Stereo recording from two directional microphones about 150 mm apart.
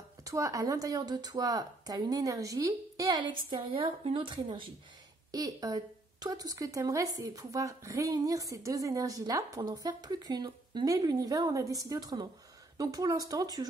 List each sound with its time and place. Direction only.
0.2 s a woman's voice: 20° right (ahead or behind)